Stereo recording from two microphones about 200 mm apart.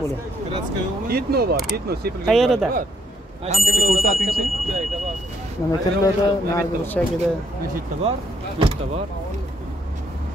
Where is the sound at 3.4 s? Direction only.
30° right (ahead or behind).